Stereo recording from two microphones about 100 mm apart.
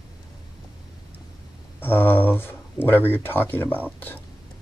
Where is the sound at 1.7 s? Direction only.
20° left (ahead or behind).